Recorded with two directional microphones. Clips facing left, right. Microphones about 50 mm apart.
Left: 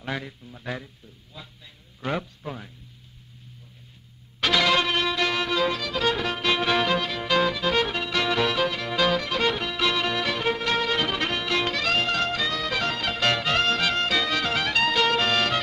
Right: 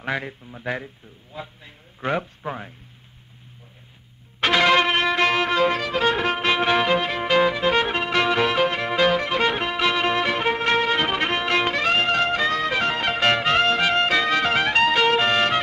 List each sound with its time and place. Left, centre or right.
0.0 s a man's voice: right
4.4 s music: right